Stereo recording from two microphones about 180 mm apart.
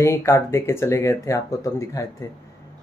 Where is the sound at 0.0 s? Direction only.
15° left (ahead or behind).